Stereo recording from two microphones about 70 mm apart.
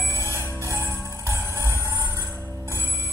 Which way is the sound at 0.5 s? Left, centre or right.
Right.